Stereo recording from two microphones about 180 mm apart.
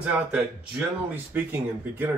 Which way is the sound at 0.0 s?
10° right (ahead or behind).